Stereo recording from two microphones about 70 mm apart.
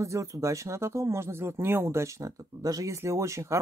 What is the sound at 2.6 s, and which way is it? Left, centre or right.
Speech, right.